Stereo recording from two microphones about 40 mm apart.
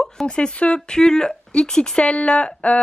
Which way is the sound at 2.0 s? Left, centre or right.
Left.